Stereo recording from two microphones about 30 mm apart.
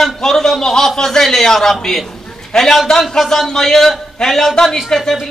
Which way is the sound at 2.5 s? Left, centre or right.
Left.